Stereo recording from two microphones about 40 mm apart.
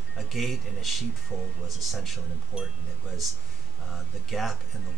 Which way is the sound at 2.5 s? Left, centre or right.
Centre.